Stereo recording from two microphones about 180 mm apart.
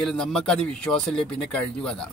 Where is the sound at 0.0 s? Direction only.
5° left (ahead or behind).